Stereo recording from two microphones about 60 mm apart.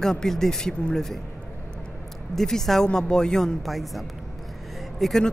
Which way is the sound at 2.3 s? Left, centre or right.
Centre.